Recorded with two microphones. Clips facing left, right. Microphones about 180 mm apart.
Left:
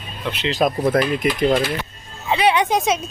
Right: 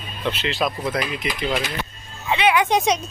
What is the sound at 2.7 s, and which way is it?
Speech, centre (ahead or behind).